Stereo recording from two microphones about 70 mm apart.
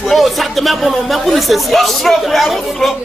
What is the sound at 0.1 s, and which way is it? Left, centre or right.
Speech, centre.